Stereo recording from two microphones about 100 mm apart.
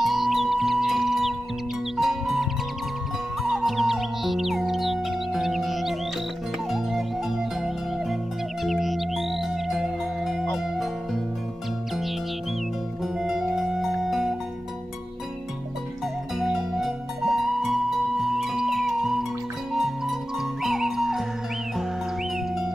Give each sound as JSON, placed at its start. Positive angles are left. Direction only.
{"t": 0.0, "sound": "music", "side_deg": 0}
{"t": 3.4, "sound": "music", "side_deg": 0}
{"t": 8.6, "sound": "music", "side_deg": 0}
{"t": 13.0, "sound": "music", "side_deg": -5}
{"t": 16.3, "sound": "music", "side_deg": -5}